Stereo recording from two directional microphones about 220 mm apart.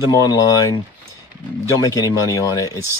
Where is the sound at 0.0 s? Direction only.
15° left (ahead or behind).